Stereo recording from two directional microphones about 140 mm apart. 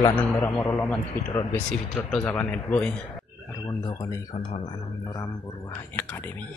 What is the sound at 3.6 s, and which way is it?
Speech, 25° left (ahead or behind).